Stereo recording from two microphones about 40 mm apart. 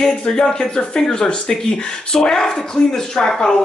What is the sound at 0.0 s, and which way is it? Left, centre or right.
Speech, centre.